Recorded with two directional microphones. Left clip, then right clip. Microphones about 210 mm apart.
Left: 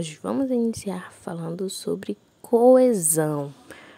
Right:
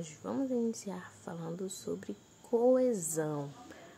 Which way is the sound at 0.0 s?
45° left (ahead or behind).